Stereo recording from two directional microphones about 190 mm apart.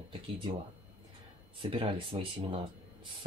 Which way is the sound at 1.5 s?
25° right (ahead or behind).